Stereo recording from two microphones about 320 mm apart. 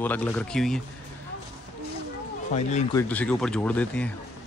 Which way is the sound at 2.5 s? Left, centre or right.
Centre.